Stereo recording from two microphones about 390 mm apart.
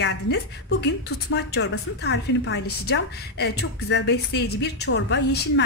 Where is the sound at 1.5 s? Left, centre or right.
Left.